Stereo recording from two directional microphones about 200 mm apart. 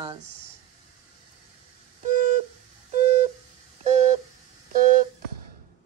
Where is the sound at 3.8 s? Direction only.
35° right (ahead or behind).